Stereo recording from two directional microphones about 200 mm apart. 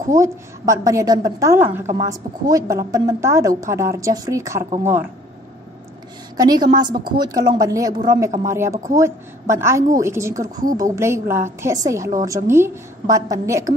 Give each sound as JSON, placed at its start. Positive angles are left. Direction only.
{"t": 0.1, "sound": "a woman's voice", "side_deg": -15}
{"t": 6.3, "sound": "a woman's voice", "side_deg": -20}